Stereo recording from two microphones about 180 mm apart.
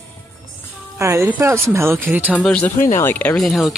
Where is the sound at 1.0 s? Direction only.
15° right (ahead or behind).